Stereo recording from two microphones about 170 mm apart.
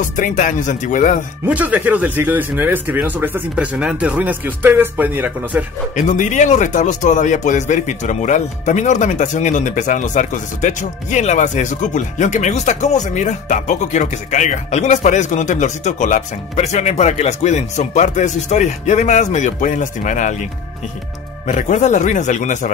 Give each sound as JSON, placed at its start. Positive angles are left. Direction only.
{"t": 0.0, "sound": "speech", "side_deg": 50}
{"t": 1.4, "sound": "speech", "side_deg": -10}
{"t": 5.9, "sound": "speech", "side_deg": 45}
{"t": 21.5, "sound": "speech", "side_deg": 45}